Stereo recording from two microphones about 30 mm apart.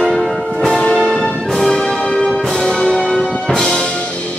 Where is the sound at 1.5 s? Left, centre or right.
Centre.